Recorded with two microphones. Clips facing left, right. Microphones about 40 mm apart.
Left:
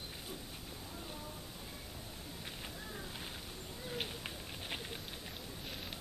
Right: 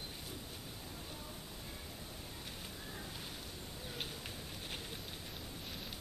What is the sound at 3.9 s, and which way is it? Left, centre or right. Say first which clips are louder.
Bird: left 3 dB; left.